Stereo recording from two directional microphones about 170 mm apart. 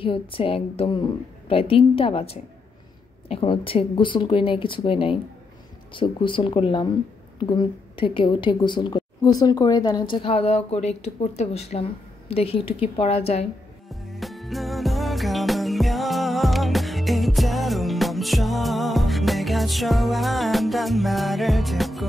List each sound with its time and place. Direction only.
0.0 s a woman's voice: 30° left (ahead or behind)
13.8 s music: centre (ahead or behind)